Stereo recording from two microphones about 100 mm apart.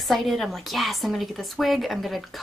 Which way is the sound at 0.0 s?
Centre (ahead or behind).